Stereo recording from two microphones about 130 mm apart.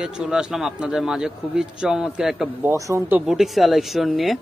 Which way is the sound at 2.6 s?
20° right (ahead or behind).